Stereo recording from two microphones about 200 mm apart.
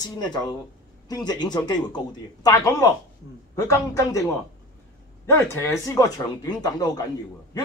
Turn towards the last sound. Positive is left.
turn(degrees=20)  # may be behind; listen again after turning